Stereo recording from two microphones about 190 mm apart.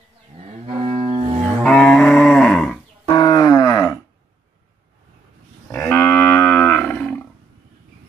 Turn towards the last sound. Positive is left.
turn(degrees=5)  # may be behind; listen again after turning